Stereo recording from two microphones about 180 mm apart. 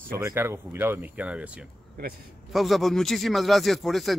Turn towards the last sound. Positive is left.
turn(degrees=0)  # may be behind; listen again after turning